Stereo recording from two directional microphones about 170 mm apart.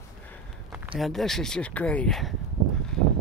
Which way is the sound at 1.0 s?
Centre (ahead or behind).